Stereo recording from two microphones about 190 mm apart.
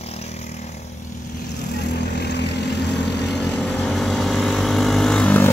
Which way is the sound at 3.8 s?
5° left (ahead or behind).